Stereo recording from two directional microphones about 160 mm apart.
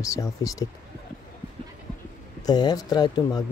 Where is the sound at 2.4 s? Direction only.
25° left (ahead or behind).